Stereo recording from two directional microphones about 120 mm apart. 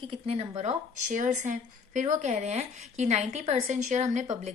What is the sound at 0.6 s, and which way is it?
Speech, 80° right.